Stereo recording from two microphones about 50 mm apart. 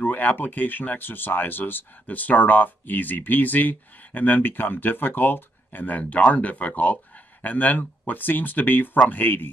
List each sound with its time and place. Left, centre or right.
0.0 s speech: left